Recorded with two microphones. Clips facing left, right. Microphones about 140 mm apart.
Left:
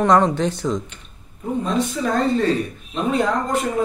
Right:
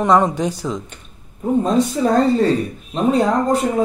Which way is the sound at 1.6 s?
35° right (ahead or behind).